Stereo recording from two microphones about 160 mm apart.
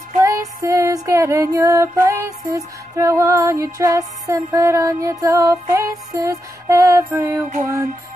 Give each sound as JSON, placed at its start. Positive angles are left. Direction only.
{"t": 0.2, "sound": "female singing", "side_deg": -20}